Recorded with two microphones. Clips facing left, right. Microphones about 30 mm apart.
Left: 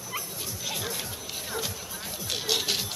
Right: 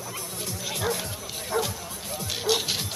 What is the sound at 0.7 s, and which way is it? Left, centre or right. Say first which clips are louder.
Speech: right 7 dB; centre.